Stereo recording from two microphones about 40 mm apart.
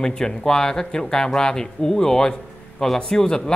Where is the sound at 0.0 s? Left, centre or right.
Centre.